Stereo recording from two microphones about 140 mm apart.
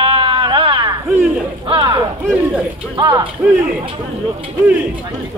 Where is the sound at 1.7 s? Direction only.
40° right (ahead or behind).